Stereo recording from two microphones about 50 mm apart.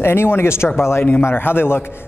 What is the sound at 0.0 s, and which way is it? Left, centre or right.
A man's voice, left.